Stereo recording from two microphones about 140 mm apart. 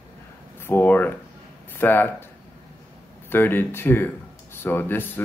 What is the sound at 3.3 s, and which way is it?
Speech, 15° left (ahead or behind).